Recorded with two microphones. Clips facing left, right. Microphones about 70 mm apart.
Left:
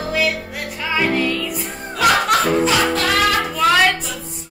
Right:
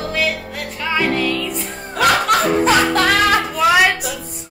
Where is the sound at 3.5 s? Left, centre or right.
Centre.